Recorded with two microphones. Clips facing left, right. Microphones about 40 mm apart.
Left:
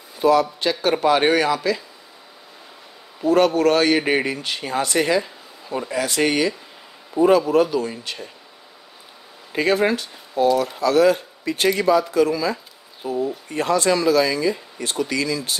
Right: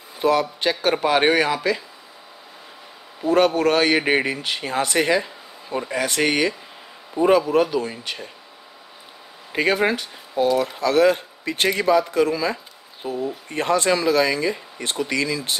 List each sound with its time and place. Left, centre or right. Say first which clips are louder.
0.2 s a man's voice: left 2 dB; right
1.0 s a man's voice: left 1 dB; centre
3.3 s speech: left 1 dB; centre
4.8 s a man's voice: even; right
5.2 s a sound: right 2 dB; centre
5.9 s a man's voice: left 1 dB; right
7.2 s speech: left 1 dB; centre
9.5 s speech: left 1 dB; right
10.8 s a man's voice: left 1 dB; right